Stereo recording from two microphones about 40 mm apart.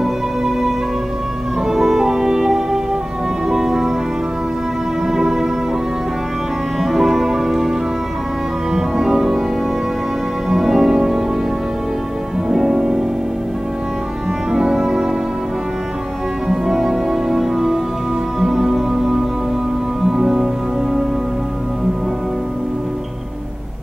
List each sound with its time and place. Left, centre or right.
1.7 s music: centre
5.0 s music: centre
6.8 s music: centre
8.7 s music: centre
10.5 s music: centre
12.4 s music: centre
14.5 s music: centre
16.4 s music: centre